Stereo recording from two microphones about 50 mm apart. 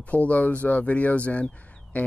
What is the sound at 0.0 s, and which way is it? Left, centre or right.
Speech, left.